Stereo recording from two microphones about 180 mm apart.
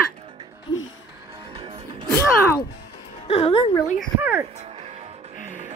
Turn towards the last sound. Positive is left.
turn(degrees=-10)  # may be behind; listen again after turning